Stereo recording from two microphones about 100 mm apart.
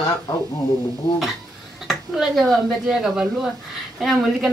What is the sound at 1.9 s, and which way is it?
Speech, centre (ahead or behind).